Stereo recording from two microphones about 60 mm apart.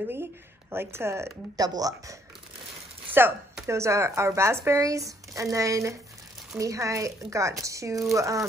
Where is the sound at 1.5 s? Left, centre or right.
Right.